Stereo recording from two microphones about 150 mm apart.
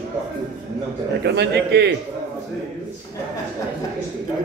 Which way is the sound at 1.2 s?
90° right.